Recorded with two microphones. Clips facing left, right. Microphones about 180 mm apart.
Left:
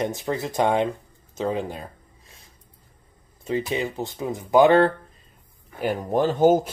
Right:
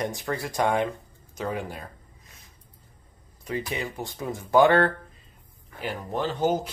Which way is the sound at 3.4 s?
25° left (ahead or behind).